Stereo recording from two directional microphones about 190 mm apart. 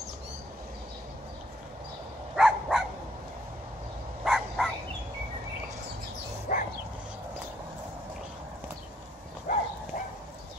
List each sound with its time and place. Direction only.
2.3 s dog: centre (ahead or behind)
4.2 s a sound: centre (ahead or behind)
6.5 s bow-wow: 45° left (ahead or behind)
9.5 s dog: 45° left (ahead or behind)